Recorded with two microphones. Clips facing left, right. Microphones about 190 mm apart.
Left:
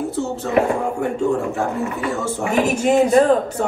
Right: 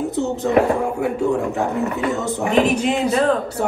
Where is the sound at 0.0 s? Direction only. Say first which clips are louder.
Right 2 dB; 20° right (ahead or behind).